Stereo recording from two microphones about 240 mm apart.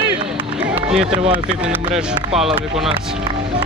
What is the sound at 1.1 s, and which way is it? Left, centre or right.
Speech, right.